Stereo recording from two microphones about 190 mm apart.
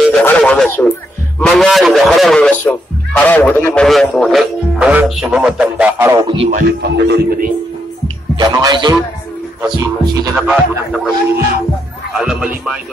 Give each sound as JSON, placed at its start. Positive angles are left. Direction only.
{"t": 0.2, "sound": "speech", "side_deg": 10}
{"t": 6.2, "sound": "speech", "side_deg": -30}
{"t": 6.5, "sound": "speech", "side_deg": -55}
{"t": 8.4, "sound": "speech", "side_deg": -20}
{"t": 10.3, "sound": "speech", "side_deg": -5}
{"t": 12.1, "sound": "speech", "side_deg": -5}